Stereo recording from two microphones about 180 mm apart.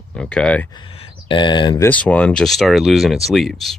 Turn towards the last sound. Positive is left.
turn(degrees=0)  # may be behind; listen again after turning